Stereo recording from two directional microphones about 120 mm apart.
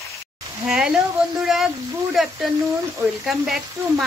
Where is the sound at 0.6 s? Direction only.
5° right (ahead or behind).